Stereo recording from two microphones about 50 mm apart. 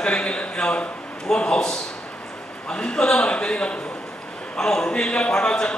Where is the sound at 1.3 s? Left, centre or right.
Centre.